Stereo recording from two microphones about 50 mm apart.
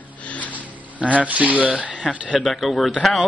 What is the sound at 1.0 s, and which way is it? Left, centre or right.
Speech, right.